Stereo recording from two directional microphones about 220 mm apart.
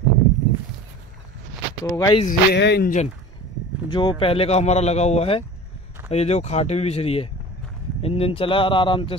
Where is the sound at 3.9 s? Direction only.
20° left (ahead or behind).